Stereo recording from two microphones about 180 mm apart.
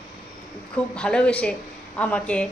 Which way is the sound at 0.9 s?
5° left (ahead or behind).